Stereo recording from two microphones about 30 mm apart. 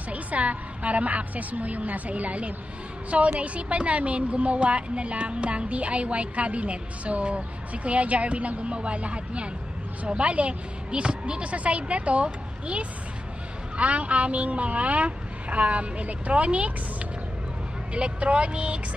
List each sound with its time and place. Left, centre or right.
0.1 s a woman's voice: right
11.5 s a woman's voice: right
17.9 s speech: right